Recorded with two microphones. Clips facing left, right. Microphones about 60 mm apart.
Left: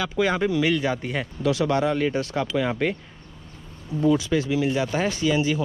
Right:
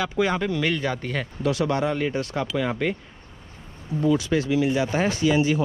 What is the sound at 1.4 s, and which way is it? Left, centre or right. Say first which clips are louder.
Speech: left 1 dB; right.